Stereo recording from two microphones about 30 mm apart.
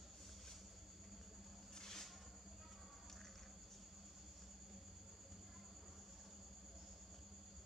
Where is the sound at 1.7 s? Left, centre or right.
Centre.